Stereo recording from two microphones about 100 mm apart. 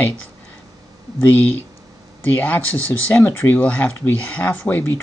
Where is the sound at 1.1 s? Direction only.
15° left (ahead or behind).